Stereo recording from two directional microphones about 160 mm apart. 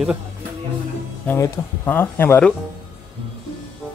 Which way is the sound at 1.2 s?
15° left (ahead or behind).